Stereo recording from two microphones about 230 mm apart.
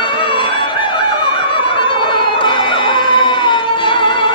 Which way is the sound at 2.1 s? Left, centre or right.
Left.